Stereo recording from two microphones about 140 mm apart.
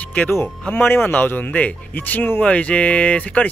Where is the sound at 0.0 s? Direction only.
10° left (ahead or behind).